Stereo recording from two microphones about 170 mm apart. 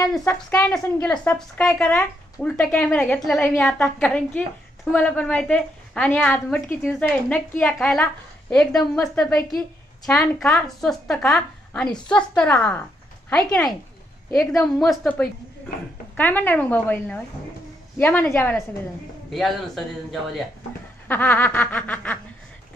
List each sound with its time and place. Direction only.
0.2 s a woman's voice: 15° left (ahead or behind)
14.8 s a woman's voice: 5° left (ahead or behind)
19.3 s a woman's voice: centre (ahead or behind)
21.1 s a woman's voice: 10° left (ahead or behind)